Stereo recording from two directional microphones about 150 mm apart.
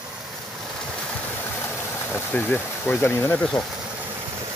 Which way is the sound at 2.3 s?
10° left (ahead or behind).